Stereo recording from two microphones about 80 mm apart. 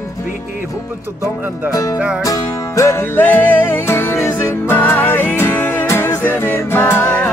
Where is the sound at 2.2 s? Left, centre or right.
Left.